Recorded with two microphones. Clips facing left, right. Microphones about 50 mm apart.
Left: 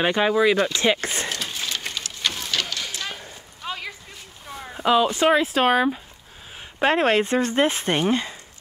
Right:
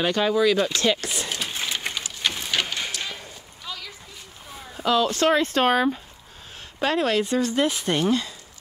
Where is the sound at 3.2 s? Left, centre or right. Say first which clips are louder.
Left 4 dB; left.